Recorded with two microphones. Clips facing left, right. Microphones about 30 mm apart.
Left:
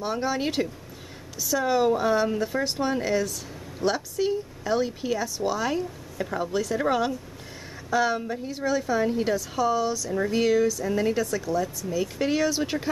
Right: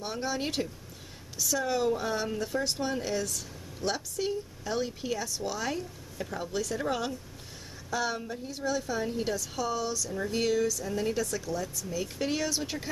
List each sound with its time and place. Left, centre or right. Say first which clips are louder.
0.0 s speech: left 6 dB; centre